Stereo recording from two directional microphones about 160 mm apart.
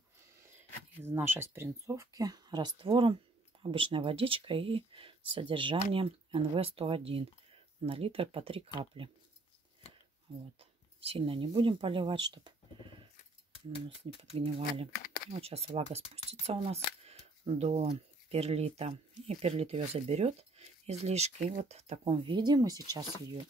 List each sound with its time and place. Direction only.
1.0 s speech: 15° right (ahead or behind); by 9.1 s 35° right (ahead or behind)
10.3 s speech: 30° right (ahead or behind)